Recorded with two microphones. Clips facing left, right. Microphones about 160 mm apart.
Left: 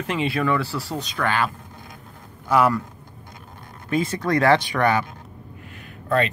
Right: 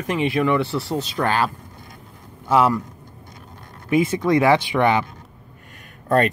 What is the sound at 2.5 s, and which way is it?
Speech, 25° right (ahead or behind).